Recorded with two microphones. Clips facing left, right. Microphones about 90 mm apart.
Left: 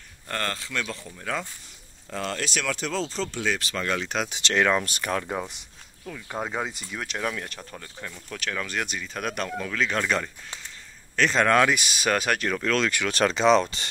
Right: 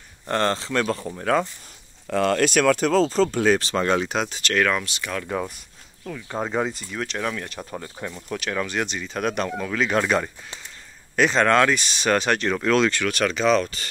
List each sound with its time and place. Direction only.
0.3 s speech: 25° right (ahead or behind); by 1.1 s 45° right (ahead or behind)
1.1 s speech: 60° right (ahead or behind); by 3.6 s 45° right (ahead or behind)
3.6 s speech: 30° right (ahead or behind)
4.3 s speech: 25° left (ahead or behind)
4.8 s speech: 45° left (ahead or behind)
5.3 s speech: 15° left (ahead or behind)
6.1 s speech: centre (ahead or behind)
8.0 s speech: 15° right (ahead or behind)
8.6 s speech: centre (ahead or behind)
13.1 s speech: 30° left (ahead or behind)